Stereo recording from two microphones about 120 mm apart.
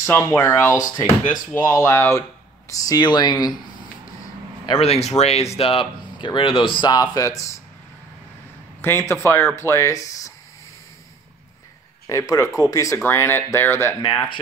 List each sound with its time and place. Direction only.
0.0 s speech: 20° left (ahead or behind)
4.7 s speech: 60° left (ahead or behind); by 7.5 s 25° left (ahead or behind)
8.8 s speech: 20° left (ahead or behind)
12.1 s speech: 25° left (ahead or behind)